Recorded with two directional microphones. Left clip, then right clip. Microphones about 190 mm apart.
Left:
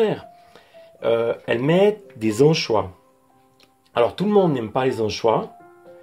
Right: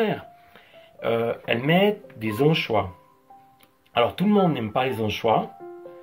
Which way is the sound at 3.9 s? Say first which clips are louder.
Left 3 dB; 45° left (ahead or behind).